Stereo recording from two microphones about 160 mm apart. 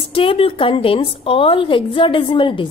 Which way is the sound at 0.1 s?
35° left (ahead or behind).